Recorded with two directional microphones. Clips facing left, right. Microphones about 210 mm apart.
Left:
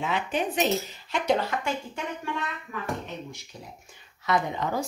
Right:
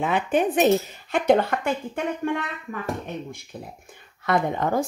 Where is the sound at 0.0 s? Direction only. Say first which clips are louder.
Right 6 dB; 55° right (ahead or behind).